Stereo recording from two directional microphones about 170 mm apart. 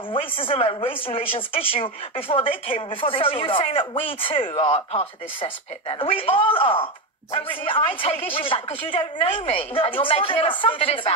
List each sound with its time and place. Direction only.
0.1 s speech: 30° left (ahead or behind)